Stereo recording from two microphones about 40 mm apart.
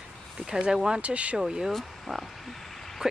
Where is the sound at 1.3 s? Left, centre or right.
Centre.